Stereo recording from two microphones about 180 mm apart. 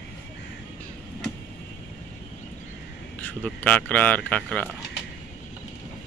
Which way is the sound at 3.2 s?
10° left (ahead or behind).